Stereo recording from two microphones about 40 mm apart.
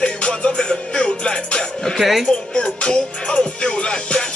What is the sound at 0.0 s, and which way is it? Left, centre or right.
Music, left.